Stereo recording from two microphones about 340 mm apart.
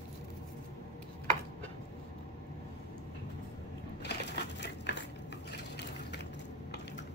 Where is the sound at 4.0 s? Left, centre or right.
Left.